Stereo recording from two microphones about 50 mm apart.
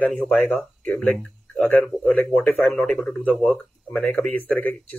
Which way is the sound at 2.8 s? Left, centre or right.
Left.